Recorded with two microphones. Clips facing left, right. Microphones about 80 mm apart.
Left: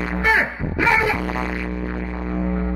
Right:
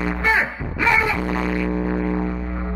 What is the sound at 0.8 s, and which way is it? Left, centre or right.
Music, centre.